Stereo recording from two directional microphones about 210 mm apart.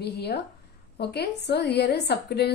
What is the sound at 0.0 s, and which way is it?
A woman's voice, 50° left (ahead or behind).